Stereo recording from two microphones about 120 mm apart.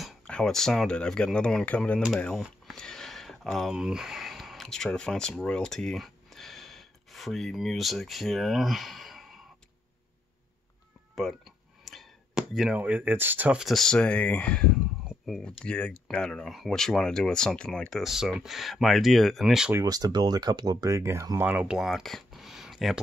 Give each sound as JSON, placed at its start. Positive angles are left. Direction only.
{"t": 0.0, "sound": "speech", "side_deg": 5}
{"t": 2.3, "sound": "speech", "side_deg": 0}
{"t": 11.1, "sound": "a sound", "side_deg": 0}
{"t": 12.7, "sound": "speech", "side_deg": -15}
{"t": 19.8, "sound": "speech", "side_deg": -30}
{"t": 21.5, "sound": "speech", "side_deg": -10}